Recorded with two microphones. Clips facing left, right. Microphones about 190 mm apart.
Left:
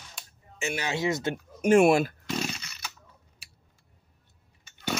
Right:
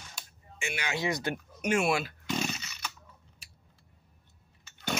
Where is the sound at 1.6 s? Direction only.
45° left (ahead or behind).